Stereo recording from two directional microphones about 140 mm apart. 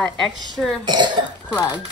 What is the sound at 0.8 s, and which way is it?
Speech, 30° right (ahead or behind).